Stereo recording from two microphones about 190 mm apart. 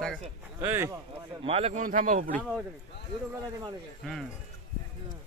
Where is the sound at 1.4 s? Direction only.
35° right (ahead or behind).